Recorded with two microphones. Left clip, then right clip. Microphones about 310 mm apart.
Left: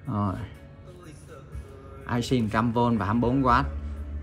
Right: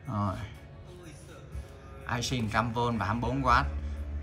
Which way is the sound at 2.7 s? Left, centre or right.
Left.